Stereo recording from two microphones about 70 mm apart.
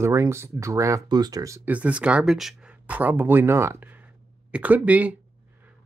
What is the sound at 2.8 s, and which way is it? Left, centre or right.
Speech, right.